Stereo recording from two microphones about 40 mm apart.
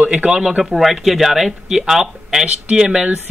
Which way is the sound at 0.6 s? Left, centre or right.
Centre.